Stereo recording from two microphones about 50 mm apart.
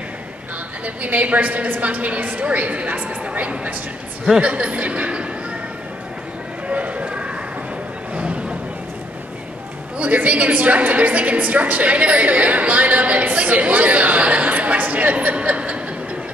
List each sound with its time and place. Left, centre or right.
0.8 s a woman's voice: right
6.7 s a sound: right
9.9 s a woman's voice: right